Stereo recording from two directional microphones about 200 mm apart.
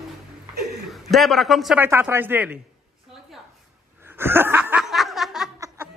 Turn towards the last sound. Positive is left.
turn(degrees=0)  # may be behind; listen again after turning